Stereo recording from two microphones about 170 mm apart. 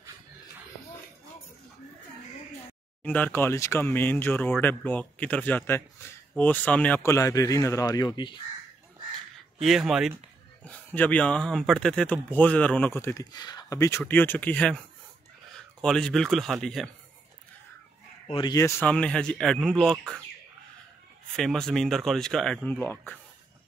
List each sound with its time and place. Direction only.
3.0 s speech: 10° left (ahead or behind); by 8.4 s 25° left (ahead or behind)
9.6 s speech: centre (ahead or behind)
15.8 s speech: centre (ahead or behind)
18.3 s speech: 25° left (ahead or behind)
18.9 s speech: 5° left (ahead or behind)
21.4 s speech: centre (ahead or behind)